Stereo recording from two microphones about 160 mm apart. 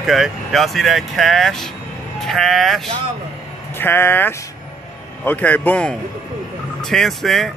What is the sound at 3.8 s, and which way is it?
A man's voice, 15° left (ahead or behind).